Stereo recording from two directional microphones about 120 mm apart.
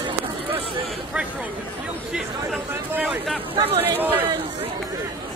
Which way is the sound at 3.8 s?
15° right (ahead or behind).